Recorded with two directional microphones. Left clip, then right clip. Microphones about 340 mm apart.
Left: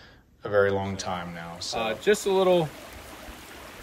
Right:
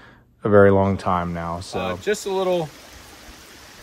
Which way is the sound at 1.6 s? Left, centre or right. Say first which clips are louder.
Right 2 dB; centre.